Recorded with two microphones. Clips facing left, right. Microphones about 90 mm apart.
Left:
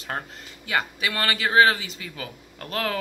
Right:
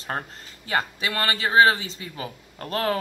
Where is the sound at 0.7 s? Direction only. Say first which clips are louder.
Even; 30° right (ahead or behind).